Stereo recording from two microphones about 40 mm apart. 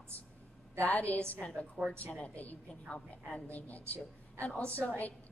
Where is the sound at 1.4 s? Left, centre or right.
Left.